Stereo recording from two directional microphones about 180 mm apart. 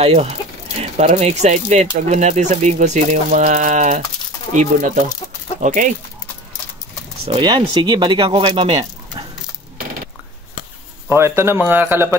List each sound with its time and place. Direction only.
0.0 s speech: 35° right (ahead or behind)
7.2 s speech: 25° right (ahead or behind)
11.1 s speech: 15° right (ahead or behind)